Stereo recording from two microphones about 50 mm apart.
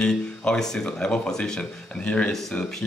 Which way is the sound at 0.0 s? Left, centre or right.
Centre.